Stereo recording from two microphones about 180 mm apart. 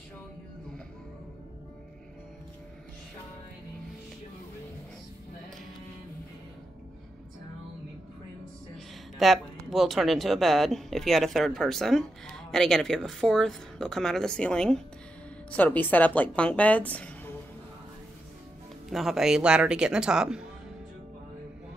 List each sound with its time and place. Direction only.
9.2 s a woman's voice: centre (ahead or behind)
18.9 s speech: centre (ahead or behind)